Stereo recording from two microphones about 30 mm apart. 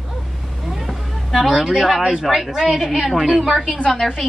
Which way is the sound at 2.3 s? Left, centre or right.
Centre.